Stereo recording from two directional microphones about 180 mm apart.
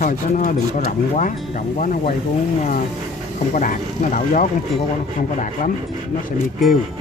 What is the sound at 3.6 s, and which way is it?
Speech, 45° left (ahead or behind).